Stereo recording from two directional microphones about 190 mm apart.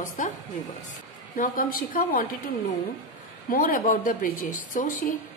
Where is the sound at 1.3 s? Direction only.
45° left (ahead or behind).